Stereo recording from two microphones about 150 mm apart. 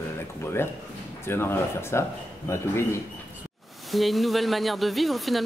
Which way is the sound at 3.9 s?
Centre (ahead or behind).